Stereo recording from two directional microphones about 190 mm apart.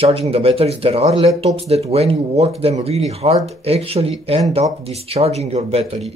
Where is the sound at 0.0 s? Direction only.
30° right (ahead or behind).